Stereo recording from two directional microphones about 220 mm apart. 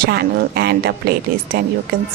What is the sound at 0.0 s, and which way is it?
A woman's voice, 45° right (ahead or behind).